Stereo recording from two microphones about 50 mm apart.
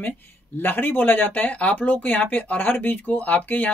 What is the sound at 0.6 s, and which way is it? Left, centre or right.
Speech, left.